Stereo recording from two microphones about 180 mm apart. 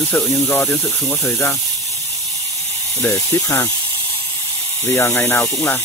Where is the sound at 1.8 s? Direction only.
35° right (ahead or behind).